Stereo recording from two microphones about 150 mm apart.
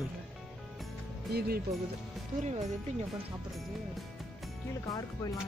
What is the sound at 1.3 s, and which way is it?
Speech, 90° right.